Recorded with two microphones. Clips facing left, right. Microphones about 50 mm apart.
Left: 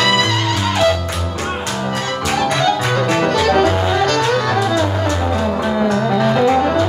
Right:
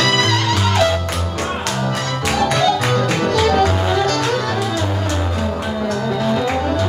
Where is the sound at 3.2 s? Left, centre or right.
Left.